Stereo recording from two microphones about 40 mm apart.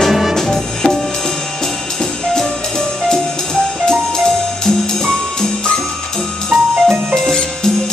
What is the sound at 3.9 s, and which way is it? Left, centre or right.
Music, centre.